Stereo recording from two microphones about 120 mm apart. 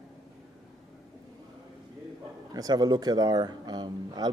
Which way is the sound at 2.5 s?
35° right (ahead or behind).